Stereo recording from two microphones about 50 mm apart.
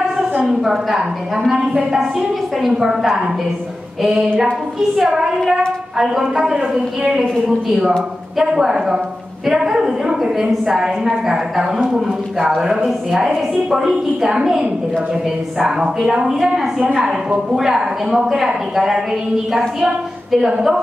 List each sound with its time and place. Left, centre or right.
0.5 s a woman's voice: centre
8.4 s a woman's voice: centre